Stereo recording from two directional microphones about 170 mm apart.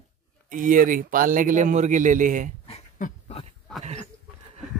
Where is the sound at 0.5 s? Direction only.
55° right (ahead or behind).